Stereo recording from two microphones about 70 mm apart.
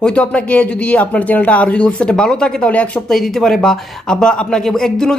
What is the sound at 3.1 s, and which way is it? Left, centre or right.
Speech, centre.